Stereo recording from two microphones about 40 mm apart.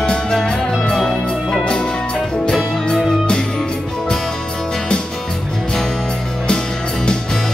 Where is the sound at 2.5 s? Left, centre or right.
Centre.